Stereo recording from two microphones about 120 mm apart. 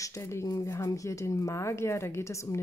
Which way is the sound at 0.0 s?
25° left (ahead or behind).